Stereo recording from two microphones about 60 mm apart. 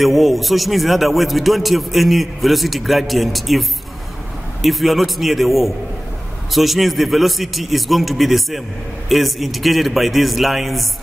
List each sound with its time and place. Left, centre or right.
0.0 s a man's voice: centre